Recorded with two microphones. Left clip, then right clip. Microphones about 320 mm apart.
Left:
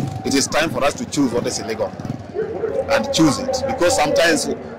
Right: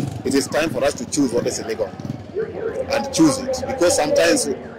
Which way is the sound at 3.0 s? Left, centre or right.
Left.